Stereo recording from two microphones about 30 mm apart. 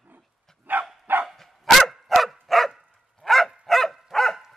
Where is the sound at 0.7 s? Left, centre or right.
Right.